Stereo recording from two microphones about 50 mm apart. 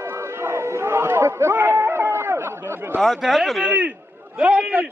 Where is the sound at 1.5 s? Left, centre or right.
Right.